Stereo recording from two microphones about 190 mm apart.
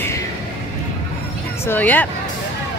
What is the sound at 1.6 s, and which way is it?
Speech, 10° left (ahead or behind).